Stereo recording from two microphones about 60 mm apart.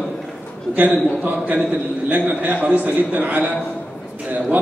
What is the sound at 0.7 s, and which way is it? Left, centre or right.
A man's voice, right.